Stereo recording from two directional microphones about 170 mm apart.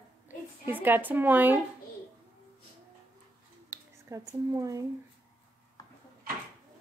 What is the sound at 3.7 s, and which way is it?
Speech, 20° right (ahead or behind).